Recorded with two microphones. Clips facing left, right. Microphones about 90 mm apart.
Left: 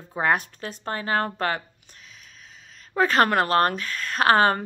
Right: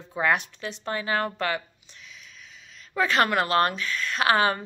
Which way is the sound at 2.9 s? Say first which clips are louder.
Left 3 dB; 40° left (ahead or behind).